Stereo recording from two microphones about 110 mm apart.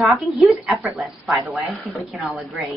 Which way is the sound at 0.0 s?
Centre (ahead or behind).